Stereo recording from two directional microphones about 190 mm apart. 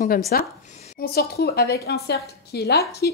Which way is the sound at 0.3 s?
50° left (ahead or behind).